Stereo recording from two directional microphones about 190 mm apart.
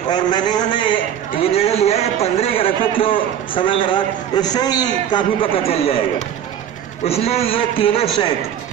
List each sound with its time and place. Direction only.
0.1 s a sound: 20° left (ahead or behind)
1.5 s a man's voice: 30° left (ahead or behind)
7.1 s a man's voice: 30° left (ahead or behind)